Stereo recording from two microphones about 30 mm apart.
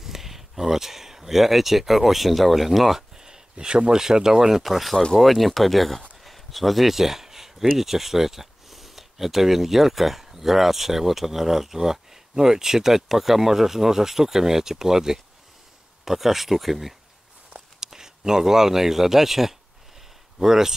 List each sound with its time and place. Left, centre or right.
0.0 s speech: centre
3.5 s speech: right
4.6 s speech: centre
6.2 s a sound: centre
7.7 s speech: centre
17.7 s speech: centre